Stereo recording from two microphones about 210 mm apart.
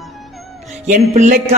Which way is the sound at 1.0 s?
35° right (ahead or behind).